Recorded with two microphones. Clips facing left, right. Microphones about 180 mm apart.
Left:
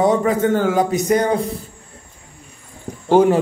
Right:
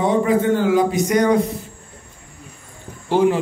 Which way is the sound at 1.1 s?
30° left (ahead or behind).